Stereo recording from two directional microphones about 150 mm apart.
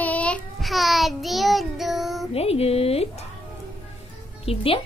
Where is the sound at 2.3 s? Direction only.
45° left (ahead or behind).